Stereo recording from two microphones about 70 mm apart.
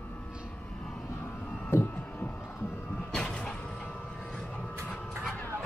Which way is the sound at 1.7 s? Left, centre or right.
Left.